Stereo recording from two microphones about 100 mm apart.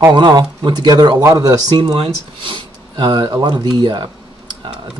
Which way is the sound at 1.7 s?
70° right (ahead or behind).